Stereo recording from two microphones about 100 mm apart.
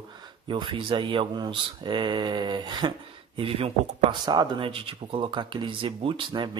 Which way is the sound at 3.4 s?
70° right (ahead or behind).